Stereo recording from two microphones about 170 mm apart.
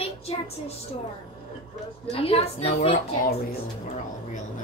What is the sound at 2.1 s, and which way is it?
Speech, 35° left (ahead or behind).